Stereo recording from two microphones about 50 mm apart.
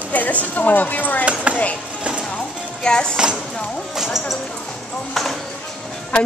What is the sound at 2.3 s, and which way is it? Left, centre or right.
Music, centre.